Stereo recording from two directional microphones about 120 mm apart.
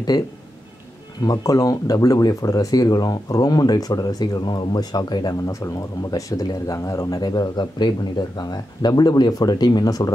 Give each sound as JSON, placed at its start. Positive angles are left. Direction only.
{"t": 1.2, "sound": "speech", "side_deg": 30}